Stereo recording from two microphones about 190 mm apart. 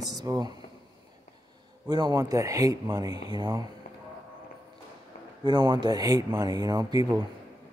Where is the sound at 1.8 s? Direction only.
20° right (ahead or behind).